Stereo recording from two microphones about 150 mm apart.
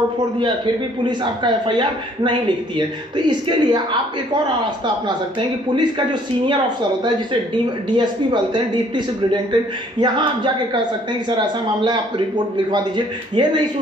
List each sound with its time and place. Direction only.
1.0 s a man's voice: 30° right (ahead or behind)
5.8 s a man's voice: 30° right (ahead or behind)